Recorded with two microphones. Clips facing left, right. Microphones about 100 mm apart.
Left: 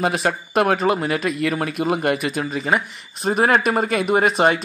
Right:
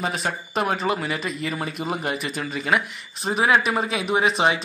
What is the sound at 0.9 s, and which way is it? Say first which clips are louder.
Speech: left 5 dB; 55° left (ahead or behind).